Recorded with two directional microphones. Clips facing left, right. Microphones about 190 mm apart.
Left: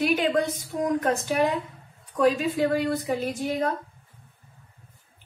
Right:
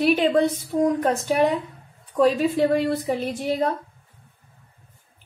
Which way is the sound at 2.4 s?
30° right (ahead or behind).